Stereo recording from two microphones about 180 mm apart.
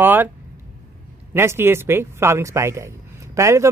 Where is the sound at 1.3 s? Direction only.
15° right (ahead or behind).